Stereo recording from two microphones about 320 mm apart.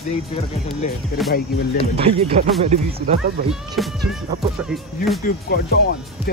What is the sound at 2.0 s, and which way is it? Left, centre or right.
Speech, centre.